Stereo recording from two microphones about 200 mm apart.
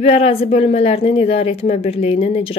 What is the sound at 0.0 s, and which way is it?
A woman's voice, 30° left (ahead or behind).